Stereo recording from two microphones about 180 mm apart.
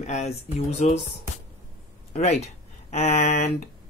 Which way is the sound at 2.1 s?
35° left (ahead or behind).